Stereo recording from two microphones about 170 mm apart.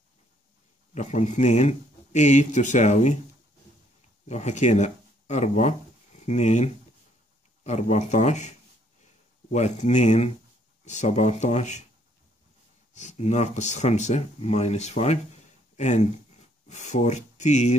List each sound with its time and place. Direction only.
0.9 s speech: 45° left (ahead or behind)
4.3 s speech: 40° left (ahead or behind)
12.9 s speech: 45° left (ahead or behind)